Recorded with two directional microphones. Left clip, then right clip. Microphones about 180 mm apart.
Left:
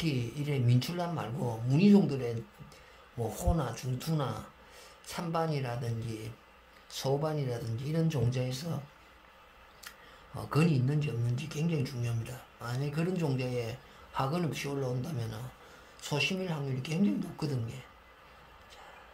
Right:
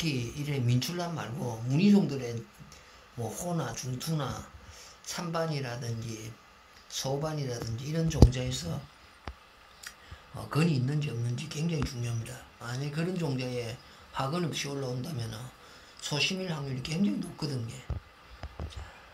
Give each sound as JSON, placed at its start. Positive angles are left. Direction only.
{"t": 0.0, "sound": "a man's voice", "side_deg": 15}
{"t": 10.3, "sound": "a man's voice", "side_deg": 10}